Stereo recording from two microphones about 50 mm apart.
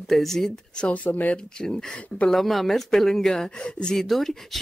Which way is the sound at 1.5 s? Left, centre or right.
Centre.